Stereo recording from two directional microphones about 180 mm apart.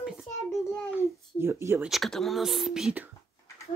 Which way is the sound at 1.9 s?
Centre (ahead or behind).